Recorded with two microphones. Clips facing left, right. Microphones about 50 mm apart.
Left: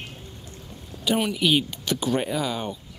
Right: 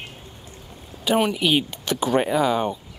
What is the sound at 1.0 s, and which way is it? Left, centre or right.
Speech, centre.